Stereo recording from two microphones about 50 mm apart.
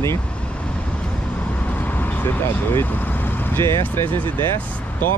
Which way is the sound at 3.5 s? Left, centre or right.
Left.